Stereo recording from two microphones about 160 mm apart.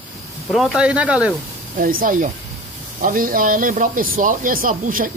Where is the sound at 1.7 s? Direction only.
60° right (ahead or behind).